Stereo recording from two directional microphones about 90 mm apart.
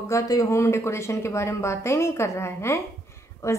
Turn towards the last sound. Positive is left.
turn(degrees=30)  # may be behind; listen again after turning